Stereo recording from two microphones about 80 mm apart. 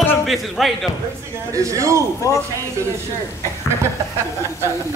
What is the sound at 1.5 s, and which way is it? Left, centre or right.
Speech, right.